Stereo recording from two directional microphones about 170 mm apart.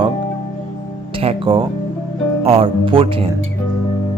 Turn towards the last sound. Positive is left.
turn(degrees=-30)  # may be behind; listen again after turning